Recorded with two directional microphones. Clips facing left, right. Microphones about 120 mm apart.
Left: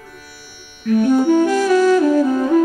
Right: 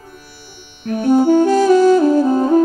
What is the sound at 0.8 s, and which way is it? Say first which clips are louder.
Saxophone: right 1 dB; 35° right (ahead or behind).